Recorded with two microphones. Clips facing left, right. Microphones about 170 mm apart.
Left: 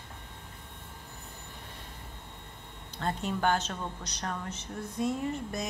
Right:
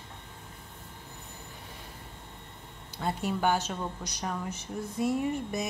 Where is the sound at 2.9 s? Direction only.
10° right (ahead or behind).